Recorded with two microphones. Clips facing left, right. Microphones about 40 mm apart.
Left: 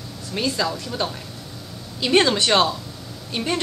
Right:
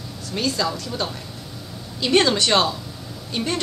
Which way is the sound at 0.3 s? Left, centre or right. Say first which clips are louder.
Even; centre.